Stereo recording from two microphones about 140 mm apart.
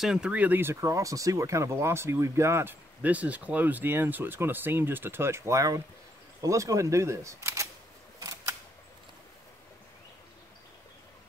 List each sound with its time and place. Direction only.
0.0 s speech: 5° right (ahead or behind); by 7.6 s 20° right (ahead or behind)
8.2 s camera: 25° right (ahead or behind)